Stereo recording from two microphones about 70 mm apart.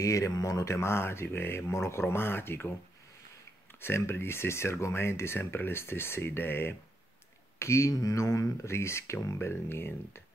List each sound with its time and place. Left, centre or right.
0.0 s speech: left
0.7 s speech: left
3.8 s speech: left
7.5 s speech: left